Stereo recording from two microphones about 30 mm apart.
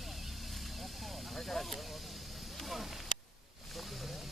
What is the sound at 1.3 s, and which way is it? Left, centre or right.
Snake, centre.